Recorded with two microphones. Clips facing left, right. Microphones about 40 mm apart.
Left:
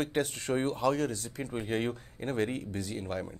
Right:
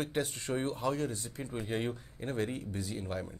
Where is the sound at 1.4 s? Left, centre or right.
Left.